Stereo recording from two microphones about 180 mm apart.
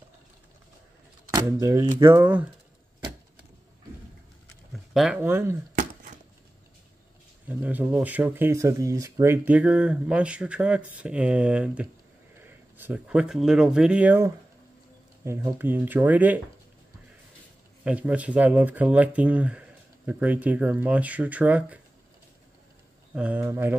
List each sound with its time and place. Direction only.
1.3 s speech: 15° right (ahead or behind)
4.9 s speech: 5° right (ahead or behind)
7.4 s speech: 10° right (ahead or behind)
17.8 s speech: 10° right (ahead or behind)
23.1 s speech: 10° right (ahead or behind)